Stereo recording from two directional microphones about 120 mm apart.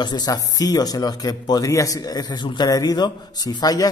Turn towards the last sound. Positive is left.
turn(degrees=35)  # may be behind; listen again after turning